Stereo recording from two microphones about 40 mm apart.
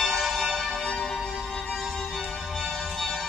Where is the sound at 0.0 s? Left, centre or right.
Centre.